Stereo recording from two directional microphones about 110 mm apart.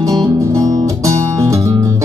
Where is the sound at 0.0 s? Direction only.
35° right (ahead or behind).